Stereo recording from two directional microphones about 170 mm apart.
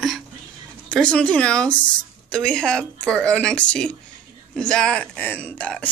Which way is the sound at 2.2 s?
5° left (ahead or behind).